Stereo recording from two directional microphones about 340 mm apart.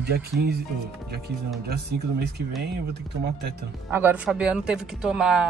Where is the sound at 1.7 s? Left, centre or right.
Right.